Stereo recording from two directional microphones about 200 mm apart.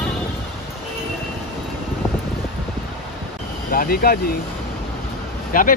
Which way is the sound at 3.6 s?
45° left (ahead or behind).